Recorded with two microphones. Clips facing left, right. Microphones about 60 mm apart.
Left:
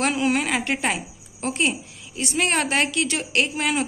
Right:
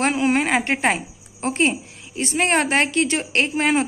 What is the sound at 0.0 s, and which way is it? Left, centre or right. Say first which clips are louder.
A woman's voice: right 3 dB; right.